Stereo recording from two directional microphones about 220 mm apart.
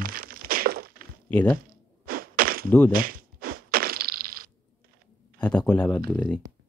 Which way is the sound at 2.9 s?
40° right (ahead or behind).